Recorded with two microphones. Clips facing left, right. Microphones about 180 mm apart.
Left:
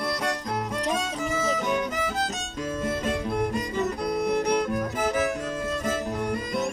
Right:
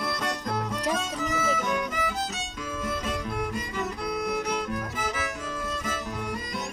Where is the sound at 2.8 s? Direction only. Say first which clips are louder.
Left 3 dB; 45° left (ahead or behind).